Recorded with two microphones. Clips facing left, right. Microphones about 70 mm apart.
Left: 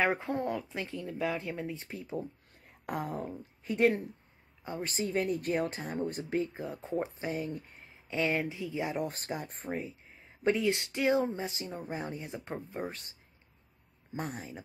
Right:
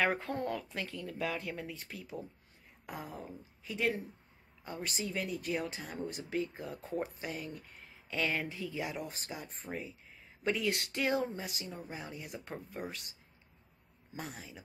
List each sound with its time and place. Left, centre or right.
0.0 s speech: centre
2.9 s speech: left
4.8 s speech: left
6.5 s speech: left
9.0 s speech: left
9.8 s speech: left
12.3 s speech: left
14.1 s speech: left